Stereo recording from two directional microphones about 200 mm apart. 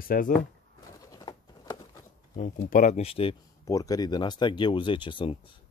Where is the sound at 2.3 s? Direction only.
45° left (ahead or behind); by 3.3 s 30° left (ahead or behind).